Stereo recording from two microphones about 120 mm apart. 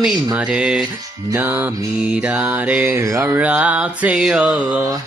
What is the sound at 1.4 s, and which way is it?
Speech, 15° right (ahead or behind).